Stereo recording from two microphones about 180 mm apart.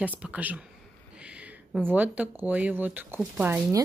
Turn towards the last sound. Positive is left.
turn(degrees=-10)  # may be behind; listen again after turning